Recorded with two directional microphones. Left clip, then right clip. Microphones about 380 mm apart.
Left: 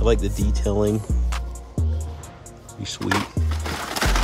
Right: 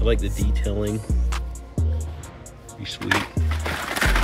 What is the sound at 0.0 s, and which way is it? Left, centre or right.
Speech, centre.